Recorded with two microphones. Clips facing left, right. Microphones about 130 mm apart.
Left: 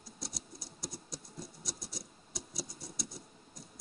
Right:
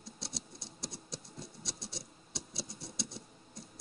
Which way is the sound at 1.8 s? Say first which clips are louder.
Right 1 dB; centre (ahead or behind).